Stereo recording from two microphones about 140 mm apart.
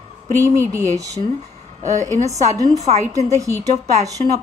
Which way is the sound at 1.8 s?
55° right (ahead or behind).